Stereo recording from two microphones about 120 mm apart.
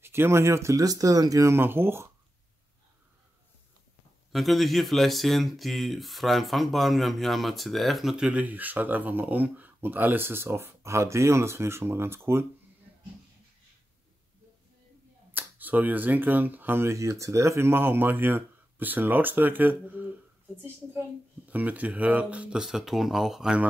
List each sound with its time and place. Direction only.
0.0 s speech: 20° right (ahead or behind)
4.3 s speech: centre (ahead or behind); by 12.2 s 20° right (ahead or behind)
15.3 s speech: 15° right (ahead or behind)
21.5 s speech: 15° right (ahead or behind)